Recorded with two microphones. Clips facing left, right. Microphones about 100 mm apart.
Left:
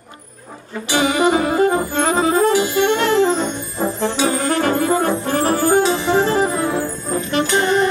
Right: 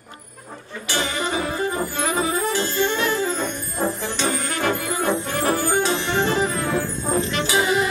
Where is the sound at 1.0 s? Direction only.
60° left (ahead or behind).